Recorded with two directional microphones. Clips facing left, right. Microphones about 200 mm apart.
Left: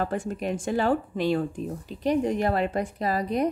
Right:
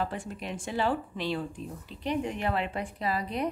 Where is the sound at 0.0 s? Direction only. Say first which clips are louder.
Left 6 dB; 45° left (ahead or behind).